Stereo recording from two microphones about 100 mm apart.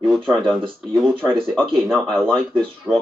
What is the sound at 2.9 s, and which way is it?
Speech, 15° left (ahead or behind).